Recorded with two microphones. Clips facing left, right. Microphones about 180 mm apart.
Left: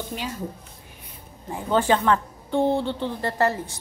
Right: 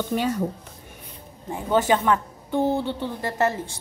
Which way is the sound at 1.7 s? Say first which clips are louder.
Even; 10° right (ahead or behind).